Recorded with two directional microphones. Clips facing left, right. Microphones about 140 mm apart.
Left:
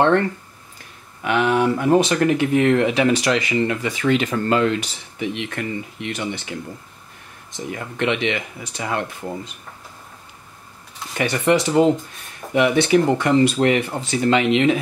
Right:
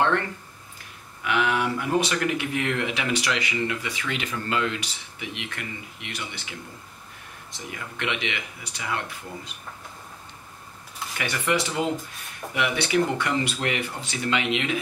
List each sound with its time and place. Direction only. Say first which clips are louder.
1.2 s speech: left 6 dB; 35° left (ahead or behind)
7.7 s speech: left 8 dB; 35° left (ahead or behind)
11.1 s speech: left 8 dB; 35° left (ahead or behind)